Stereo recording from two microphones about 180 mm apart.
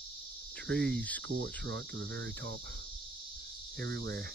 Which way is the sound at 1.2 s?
85° right.